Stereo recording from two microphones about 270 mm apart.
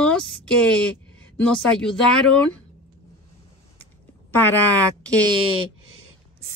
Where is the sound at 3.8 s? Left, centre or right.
Centre.